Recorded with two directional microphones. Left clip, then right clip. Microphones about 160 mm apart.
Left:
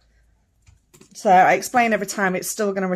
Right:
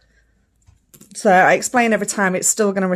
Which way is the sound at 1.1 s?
40° right (ahead or behind).